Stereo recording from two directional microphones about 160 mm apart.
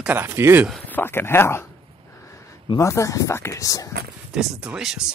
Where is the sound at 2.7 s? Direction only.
20° left (ahead or behind).